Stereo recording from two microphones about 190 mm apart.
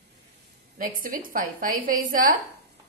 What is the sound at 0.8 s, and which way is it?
A woman's voice, 45° right (ahead or behind).